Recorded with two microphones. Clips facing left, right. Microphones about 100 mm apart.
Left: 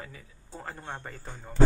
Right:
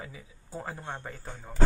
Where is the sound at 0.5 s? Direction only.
Centre (ahead or behind).